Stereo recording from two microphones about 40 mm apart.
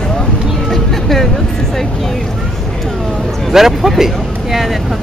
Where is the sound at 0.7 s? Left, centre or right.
Centre.